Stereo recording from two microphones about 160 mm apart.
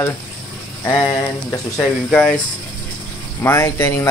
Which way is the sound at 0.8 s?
25° left (ahead or behind).